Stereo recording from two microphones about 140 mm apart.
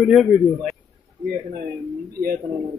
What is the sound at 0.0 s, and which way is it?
Speech, centre (ahead or behind).